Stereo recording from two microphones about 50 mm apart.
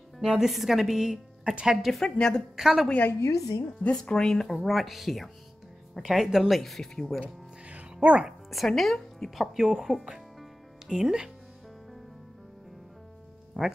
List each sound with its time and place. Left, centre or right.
0.4 s speech: centre
1.5 s speech: centre
1.9 s speech: centre
2.1 s a woman's voice: centre
2.5 s a woman's voice: centre
3.2 s a woman's voice: left
3.9 s speech: centre
6.6 s speech: centre
7.6 s music: right
8.3 s a woman's voice: centre
9.4 s a woman's voice: centre
13.5 s speech: centre